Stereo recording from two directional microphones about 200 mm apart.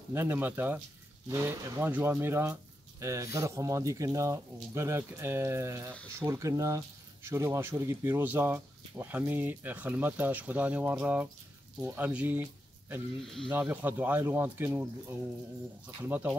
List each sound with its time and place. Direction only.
0.1 s speech: 10° right (ahead or behind)
13.5 s speech: 10° right (ahead or behind)
16.0 s speech: 10° right (ahead or behind)